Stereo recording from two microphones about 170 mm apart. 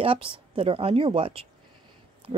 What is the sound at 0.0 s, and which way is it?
Speech, 35° right (ahead or behind).